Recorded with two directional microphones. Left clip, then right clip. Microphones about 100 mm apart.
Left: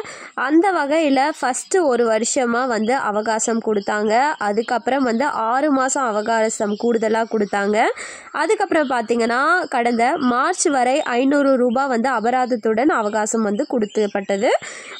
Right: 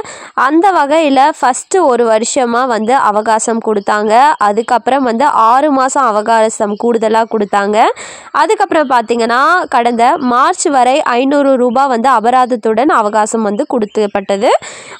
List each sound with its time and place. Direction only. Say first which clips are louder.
0.4 s a woman's voice: right 8 dB; 10° right (ahead or behind)